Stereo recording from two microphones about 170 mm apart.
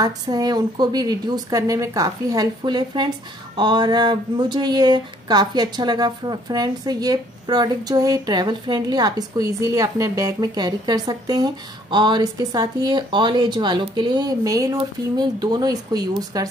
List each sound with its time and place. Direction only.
0.0 s speech: 25° right (ahead or behind)